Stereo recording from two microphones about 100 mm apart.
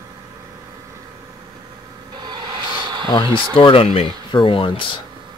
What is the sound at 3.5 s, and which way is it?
Speech, 65° left (ahead or behind).